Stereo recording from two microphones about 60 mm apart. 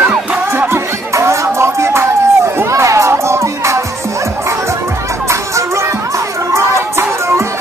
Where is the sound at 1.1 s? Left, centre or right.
Right.